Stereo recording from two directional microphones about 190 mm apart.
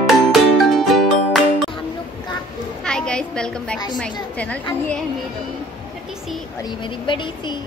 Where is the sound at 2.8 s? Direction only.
5° left (ahead or behind).